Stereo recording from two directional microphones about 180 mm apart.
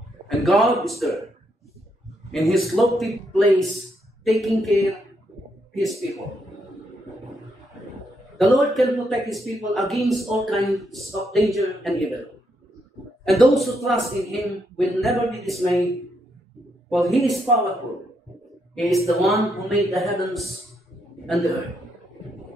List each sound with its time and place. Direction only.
0.4 s speech: centre (ahead or behind)
2.3 s speech: centre (ahead or behind)
8.4 s a man's voice: centre (ahead or behind)
16.9 s speech: centre (ahead or behind)
18.8 s speech: centre (ahead or behind)